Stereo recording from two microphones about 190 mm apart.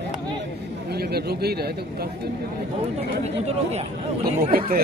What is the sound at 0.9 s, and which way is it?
Speech, 55° right (ahead or behind).